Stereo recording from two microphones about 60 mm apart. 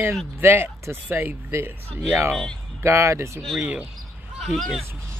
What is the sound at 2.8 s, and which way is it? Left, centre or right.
Speech, right.